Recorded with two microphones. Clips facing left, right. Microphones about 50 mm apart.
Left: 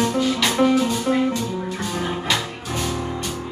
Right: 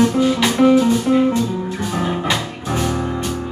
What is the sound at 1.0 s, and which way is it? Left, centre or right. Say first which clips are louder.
Music: right 5 dB; right.